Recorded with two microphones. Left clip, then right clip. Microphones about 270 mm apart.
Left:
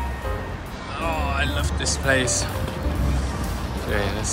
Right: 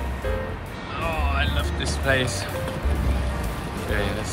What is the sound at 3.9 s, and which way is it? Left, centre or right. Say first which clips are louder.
Speech: left 2 dB; centre.